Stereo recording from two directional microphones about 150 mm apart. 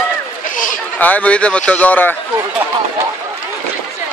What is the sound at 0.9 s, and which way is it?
A man's voice, 10° left (ahead or behind).